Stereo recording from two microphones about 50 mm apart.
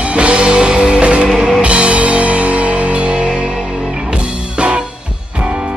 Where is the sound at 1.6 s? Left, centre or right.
Right.